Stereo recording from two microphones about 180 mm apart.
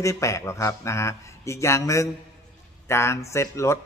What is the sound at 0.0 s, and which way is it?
Speech, 15° left (ahead or behind).